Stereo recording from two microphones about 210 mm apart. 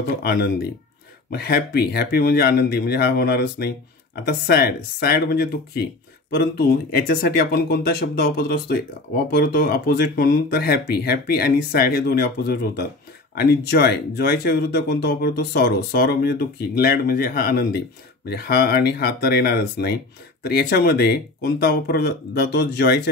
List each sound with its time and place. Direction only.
0.2 s speech: 50° left (ahead or behind)